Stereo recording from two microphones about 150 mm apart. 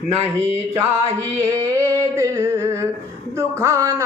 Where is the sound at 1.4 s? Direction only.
20° right (ahead or behind).